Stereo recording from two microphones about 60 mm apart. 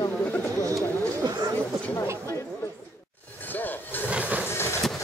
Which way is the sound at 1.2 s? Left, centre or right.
Right.